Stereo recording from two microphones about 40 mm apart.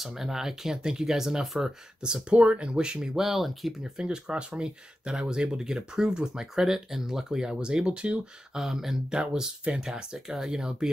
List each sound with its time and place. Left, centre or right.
0.0 s speech: centre
3.0 s speech: centre
3.9 s speech: centre
8.5 s speech: centre